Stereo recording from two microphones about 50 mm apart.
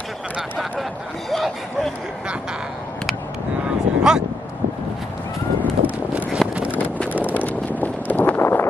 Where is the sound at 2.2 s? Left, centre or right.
Centre.